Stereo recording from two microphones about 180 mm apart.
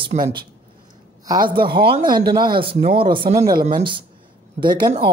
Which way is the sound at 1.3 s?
25° right (ahead or behind).